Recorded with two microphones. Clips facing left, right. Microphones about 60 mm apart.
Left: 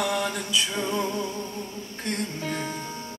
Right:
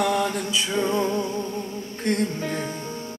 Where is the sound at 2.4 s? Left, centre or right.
Right.